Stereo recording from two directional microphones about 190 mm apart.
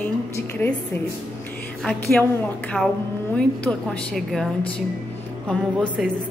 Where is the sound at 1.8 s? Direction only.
5° left (ahead or behind).